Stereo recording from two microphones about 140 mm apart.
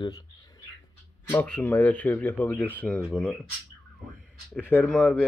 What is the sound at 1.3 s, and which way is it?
Speech, 10° left (ahead or behind).